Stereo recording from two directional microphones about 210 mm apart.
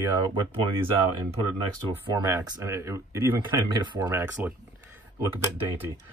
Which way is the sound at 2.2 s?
15° right (ahead or behind).